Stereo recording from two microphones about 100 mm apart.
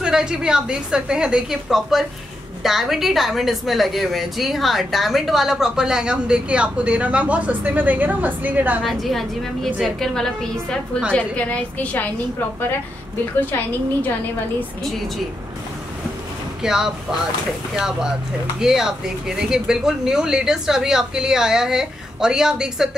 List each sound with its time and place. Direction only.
0.0 s a woman's voice: 5° right (ahead or behind)
8.8 s a woman's voice: centre (ahead or behind)
13.5 s a woman's voice: 20° left (ahead or behind)
16.6 s a woman's voice: 5° right (ahead or behind)